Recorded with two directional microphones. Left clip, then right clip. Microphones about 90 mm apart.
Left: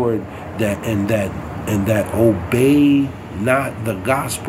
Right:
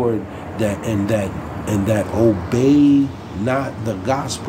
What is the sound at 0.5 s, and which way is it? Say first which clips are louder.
Speech: left 1 dB; 35° right (ahead or behind).